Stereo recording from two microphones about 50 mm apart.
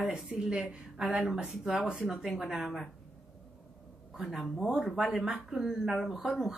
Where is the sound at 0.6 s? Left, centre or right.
Right; by 2.8 s centre.